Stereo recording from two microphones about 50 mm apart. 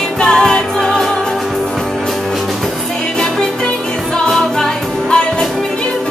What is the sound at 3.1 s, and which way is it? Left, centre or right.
Music, centre.